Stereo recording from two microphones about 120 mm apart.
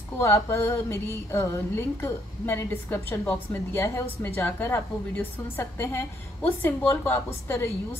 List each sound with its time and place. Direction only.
0.2 s a woman's voice: 20° left (ahead or behind)